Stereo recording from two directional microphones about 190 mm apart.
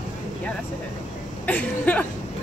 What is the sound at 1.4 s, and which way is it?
Speech, 10° left (ahead or behind).